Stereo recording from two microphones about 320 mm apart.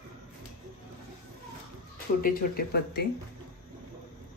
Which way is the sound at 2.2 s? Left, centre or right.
Left.